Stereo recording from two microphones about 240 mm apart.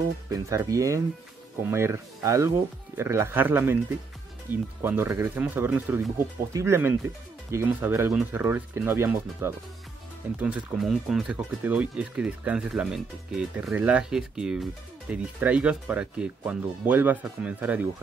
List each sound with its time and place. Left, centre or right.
0.3 s speech: centre